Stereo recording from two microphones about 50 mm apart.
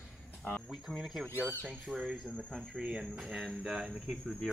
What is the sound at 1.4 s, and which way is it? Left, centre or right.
Speech, right.